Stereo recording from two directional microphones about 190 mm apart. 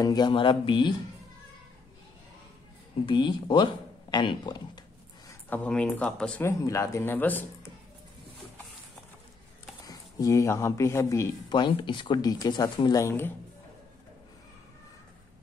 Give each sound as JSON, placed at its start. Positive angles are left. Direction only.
{"t": 0.0, "sound": "speech", "side_deg": 20}
{"t": 3.1, "sound": "speech", "side_deg": 25}
{"t": 5.5, "sound": "speech", "side_deg": 5}
{"t": 9.8, "sound": "speech", "side_deg": 20}